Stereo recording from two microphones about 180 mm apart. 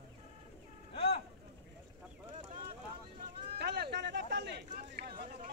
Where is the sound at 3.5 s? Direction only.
60° right (ahead or behind).